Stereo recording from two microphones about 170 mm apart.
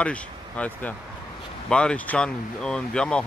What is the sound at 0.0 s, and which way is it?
Speech, 5° left (ahead or behind).